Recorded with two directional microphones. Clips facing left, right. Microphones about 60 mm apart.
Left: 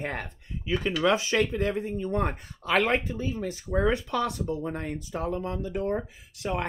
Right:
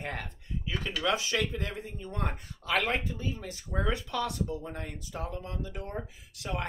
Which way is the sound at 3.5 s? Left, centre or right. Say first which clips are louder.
Left 7 dB; left.